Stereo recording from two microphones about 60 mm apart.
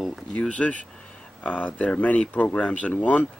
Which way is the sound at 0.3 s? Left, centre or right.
Left.